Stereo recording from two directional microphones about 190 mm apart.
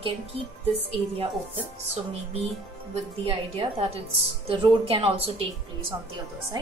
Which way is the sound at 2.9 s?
30° right (ahead or behind).